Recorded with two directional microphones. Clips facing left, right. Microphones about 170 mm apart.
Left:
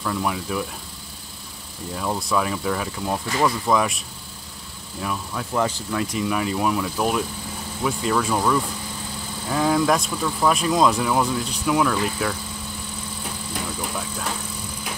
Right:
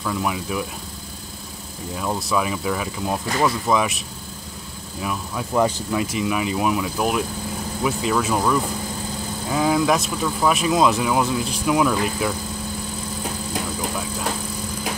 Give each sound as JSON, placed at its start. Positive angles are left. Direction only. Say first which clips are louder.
{"t": 0.0, "sound": "speech", "louder": "right 1 dB", "side_deg": -5}
{"t": 2.0, "sound": "speech", "louder": "right 1 dB", "side_deg": 0}
{"t": 5.0, "sound": "speech", "louder": "right 1 dB", "side_deg": -10}